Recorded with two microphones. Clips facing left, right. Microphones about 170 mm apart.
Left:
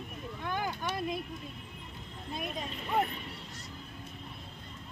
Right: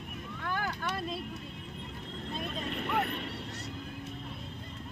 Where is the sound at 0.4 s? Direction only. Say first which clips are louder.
Even; 20° left (ahead or behind).